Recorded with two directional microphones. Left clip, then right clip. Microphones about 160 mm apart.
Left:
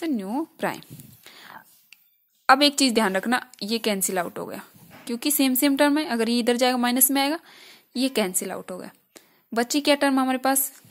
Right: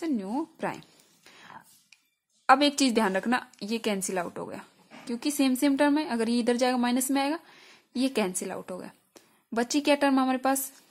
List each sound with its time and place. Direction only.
0.1 s a woman's voice: 15° left (ahead or behind)
0.7 s a sound: 25° left (ahead or behind)
2.4 s a woman's voice: 20° left (ahead or behind)